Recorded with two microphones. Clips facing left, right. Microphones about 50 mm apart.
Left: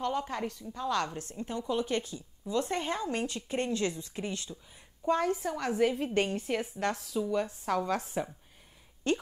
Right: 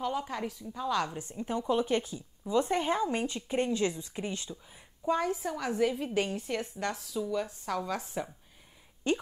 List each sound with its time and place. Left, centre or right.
0.0 s a woman's voice: centre
1.5 s a woman's voice: centre